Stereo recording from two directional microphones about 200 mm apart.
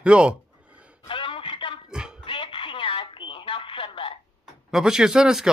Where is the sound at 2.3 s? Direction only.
25° left (ahead or behind).